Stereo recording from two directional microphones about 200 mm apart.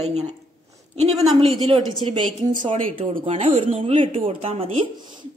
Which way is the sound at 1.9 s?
25° right (ahead or behind).